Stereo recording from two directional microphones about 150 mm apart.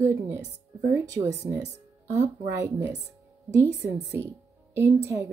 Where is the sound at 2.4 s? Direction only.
20° right (ahead or behind).